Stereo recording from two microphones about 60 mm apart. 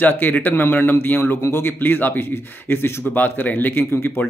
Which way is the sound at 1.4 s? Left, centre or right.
Left.